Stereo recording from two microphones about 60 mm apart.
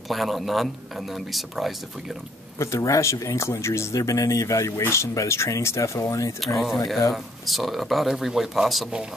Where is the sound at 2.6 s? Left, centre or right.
Left.